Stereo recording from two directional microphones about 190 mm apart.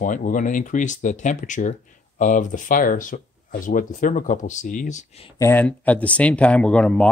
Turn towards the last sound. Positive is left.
turn(degrees=5)  # may be behind; listen again after turning